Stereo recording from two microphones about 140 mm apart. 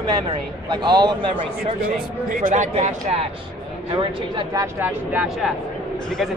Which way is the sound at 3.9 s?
30° right (ahead or behind).